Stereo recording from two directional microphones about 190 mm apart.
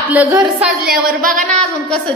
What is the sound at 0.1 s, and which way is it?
Speech, 10° right (ahead or behind).